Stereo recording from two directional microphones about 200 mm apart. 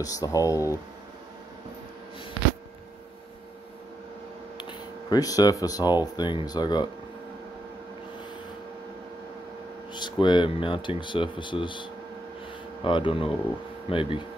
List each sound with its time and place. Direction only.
0.0 s speech: 15° left (ahead or behind)
4.6 s a sound: 20° left (ahead or behind)
6.1 s speech: 20° left (ahead or behind)
9.9 s speech: 20° left (ahead or behind)